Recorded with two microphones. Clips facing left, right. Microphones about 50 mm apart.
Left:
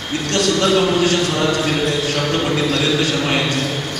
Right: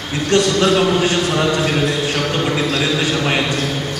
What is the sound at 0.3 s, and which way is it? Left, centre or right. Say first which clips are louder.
A man's voice: right 2 dB; centre.